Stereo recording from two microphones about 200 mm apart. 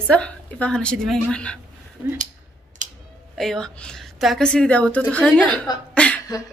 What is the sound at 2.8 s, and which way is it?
Finger snapping, 40° right (ahead or behind).